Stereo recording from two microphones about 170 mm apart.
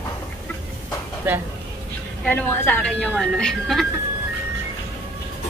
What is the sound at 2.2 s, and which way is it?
A woman's voice, 10° left (ahead or behind).